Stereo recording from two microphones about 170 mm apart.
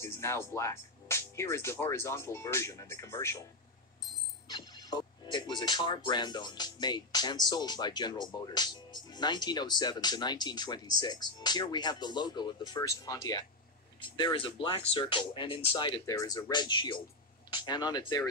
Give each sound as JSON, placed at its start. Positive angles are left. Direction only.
{"t": 0.0, "sound": "speech", "side_deg": 15}
{"t": 4.5, "sound": "speech", "side_deg": 25}
{"t": 16.1, "sound": "speech", "side_deg": 20}